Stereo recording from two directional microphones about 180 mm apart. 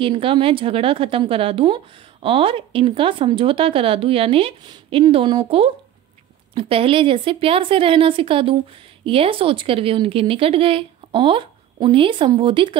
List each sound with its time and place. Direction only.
0.0 s a woman's voice: 30° right (ahead or behind)